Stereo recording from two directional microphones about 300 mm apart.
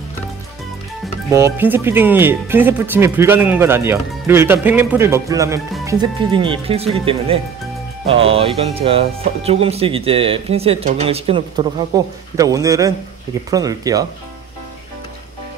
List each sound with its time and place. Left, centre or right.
1.3 s speech: centre